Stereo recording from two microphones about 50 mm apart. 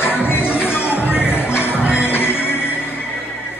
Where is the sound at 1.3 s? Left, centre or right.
Left.